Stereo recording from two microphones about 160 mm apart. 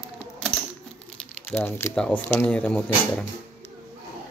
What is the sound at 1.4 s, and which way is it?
Speech, 10° left (ahead or behind).